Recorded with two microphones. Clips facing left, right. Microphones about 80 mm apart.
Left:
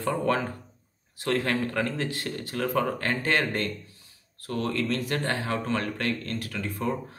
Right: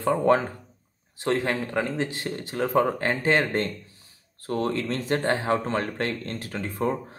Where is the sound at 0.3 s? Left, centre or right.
Right.